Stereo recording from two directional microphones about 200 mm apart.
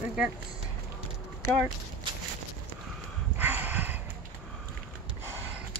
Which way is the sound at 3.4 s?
10° right (ahead or behind).